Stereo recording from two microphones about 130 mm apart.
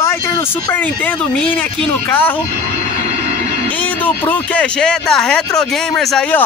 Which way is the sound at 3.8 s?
10° left (ahead or behind).